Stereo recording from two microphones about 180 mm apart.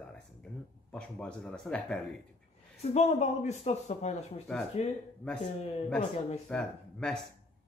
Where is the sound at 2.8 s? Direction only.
40° left (ahead or behind).